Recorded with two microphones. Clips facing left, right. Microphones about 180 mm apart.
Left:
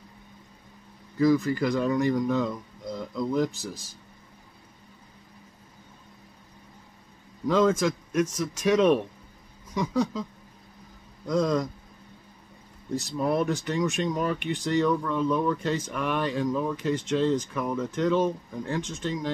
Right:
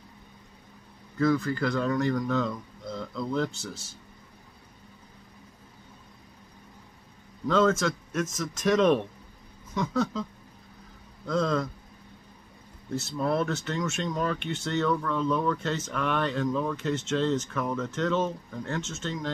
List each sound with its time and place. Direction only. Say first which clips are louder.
1.2 s speech: left 3 dB; 15° left (ahead or behind)
7.4 s speech: left 1 dB; 10° left (ahead or behind)
11.2 s speech: left 2 dB; 15° left (ahead or behind)
12.9 s speech: left 2 dB; 15° left (ahead or behind)